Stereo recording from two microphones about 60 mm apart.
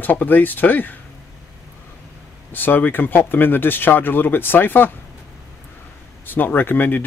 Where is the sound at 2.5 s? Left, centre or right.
Left.